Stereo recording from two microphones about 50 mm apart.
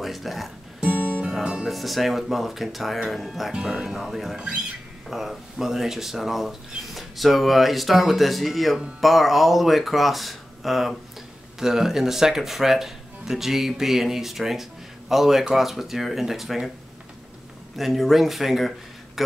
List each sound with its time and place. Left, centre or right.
0.0 s speech: centre
0.8 s music: right
1.3 s speech: centre
1.7 s speech: centre
3.5 s speech: centre
17.7 s speech: centre